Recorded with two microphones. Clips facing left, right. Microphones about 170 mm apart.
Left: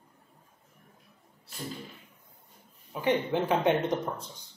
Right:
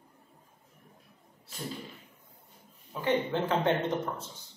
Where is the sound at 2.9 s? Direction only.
15° left (ahead or behind).